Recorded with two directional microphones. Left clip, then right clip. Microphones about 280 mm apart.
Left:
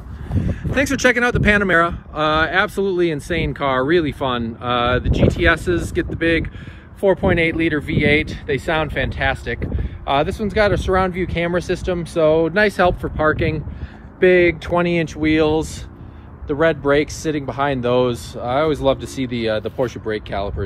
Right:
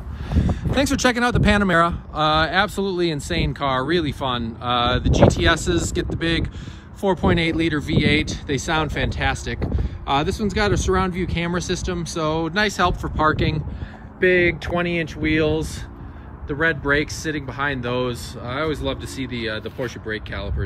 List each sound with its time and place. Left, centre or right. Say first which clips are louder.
0.4 s a sound: right 1 dB; right
0.7 s speech: left 4 dB; centre
14.2 s speech: left 4 dB; centre